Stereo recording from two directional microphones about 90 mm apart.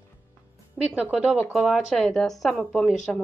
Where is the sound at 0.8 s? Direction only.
15° right (ahead or behind); by 2.9 s 5° left (ahead or behind).